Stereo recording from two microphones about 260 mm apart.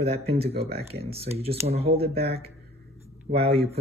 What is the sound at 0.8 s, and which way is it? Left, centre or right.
Speech, right.